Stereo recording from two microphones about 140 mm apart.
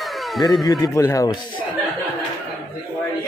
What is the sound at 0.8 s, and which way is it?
Speech, 25° left (ahead or behind).